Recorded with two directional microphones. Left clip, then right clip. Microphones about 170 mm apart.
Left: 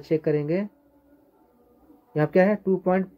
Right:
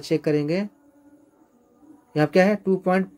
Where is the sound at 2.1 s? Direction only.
15° right (ahead or behind).